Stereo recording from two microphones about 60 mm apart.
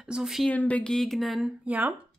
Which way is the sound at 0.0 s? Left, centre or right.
Centre.